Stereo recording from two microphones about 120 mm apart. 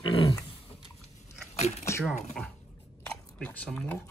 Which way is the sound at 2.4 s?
10° left (ahead or behind).